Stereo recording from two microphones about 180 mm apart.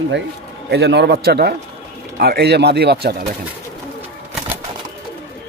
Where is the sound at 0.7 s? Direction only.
65° right (ahead or behind).